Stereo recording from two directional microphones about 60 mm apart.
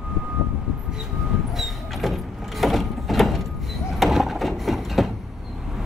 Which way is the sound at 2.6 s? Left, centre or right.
Centre.